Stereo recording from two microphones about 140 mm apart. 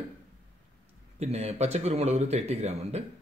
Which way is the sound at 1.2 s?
50° right (ahead or behind).